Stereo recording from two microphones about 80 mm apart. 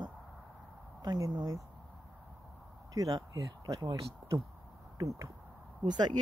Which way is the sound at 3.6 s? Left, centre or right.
Right.